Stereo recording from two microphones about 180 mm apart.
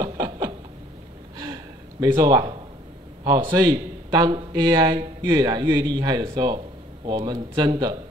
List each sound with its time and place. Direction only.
0.0 s a sound: 20° right (ahead or behind)
1.4 s gasp: 20° right (ahead or behind)
3.3 s a man's voice: 15° right (ahead or behind)